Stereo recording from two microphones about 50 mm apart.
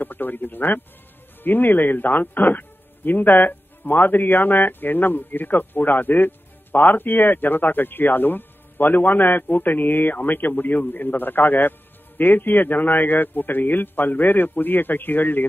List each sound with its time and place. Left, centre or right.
0.0 s speech: left